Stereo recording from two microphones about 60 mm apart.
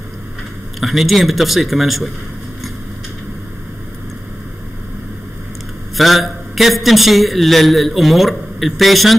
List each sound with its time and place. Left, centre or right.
0.7 s a man's voice: centre
5.9 s a man's voice: centre